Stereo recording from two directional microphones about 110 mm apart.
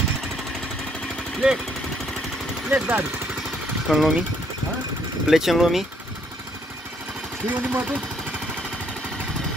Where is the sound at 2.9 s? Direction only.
10° right (ahead or behind).